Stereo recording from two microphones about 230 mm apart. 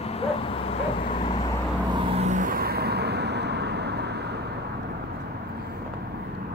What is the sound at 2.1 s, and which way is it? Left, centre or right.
Vehicle, right.